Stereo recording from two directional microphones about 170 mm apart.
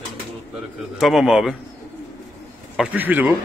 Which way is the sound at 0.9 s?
Centre (ahead or behind).